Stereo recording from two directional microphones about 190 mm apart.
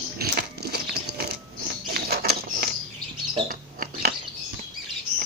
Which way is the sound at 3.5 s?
50° right (ahead or behind).